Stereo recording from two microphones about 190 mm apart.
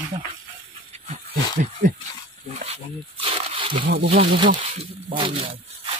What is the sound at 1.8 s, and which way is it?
Speech, 40° right (ahead or behind).